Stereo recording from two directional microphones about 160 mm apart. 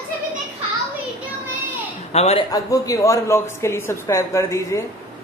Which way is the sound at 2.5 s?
20° left (ahead or behind).